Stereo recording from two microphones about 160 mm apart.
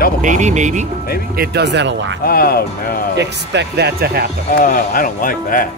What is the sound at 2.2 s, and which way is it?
Speech, 70° left (ahead or behind).